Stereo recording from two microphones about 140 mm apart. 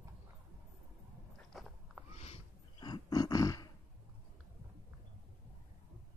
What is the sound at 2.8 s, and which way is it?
Roaring cats, 30° left (ahead or behind).